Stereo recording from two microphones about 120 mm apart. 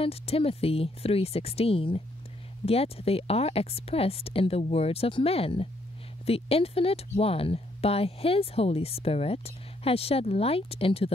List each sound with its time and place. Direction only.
0.0 s speech: 55° left (ahead or behind)